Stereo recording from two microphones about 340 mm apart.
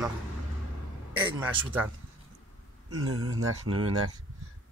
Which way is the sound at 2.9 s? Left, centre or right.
Right.